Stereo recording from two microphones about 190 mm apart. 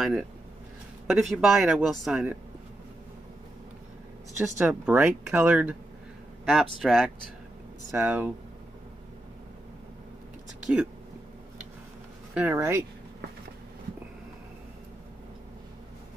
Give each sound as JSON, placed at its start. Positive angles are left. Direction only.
{"t": 0.0, "sound": "speech", "side_deg": 0}
{"t": 4.6, "sound": "speech", "side_deg": -5}
{"t": 12.4, "sound": "speech", "side_deg": -10}